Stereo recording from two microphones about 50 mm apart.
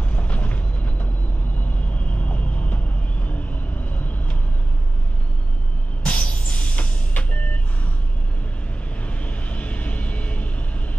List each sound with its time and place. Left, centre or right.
0.1 s vehicle: left
6.0 s vehicle: left
9.0 s vehicle: left